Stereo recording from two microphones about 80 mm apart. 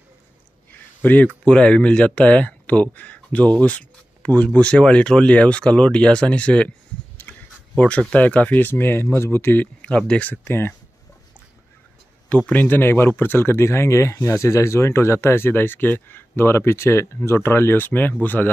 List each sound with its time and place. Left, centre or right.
1.0 s speech: left
7.3 s a sound: centre
7.7 s speech: centre
12.4 s speech: left